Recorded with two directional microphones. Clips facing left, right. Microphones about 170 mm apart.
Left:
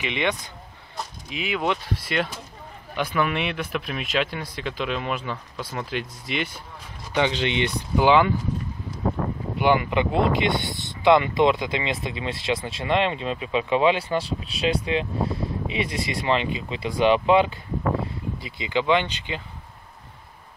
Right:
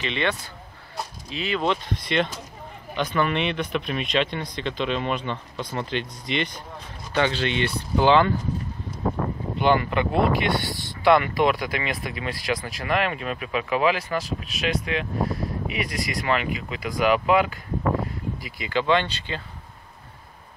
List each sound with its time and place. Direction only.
0.0 s speech: 15° left (ahead or behind)
7.1 s speech: 15° left (ahead or behind)
9.6 s speech: 15° left (ahead or behind)